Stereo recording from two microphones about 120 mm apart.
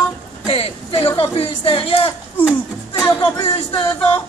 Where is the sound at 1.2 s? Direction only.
50° left (ahead or behind).